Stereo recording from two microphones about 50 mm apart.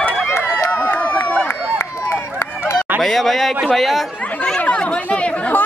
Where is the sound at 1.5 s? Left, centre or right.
Left.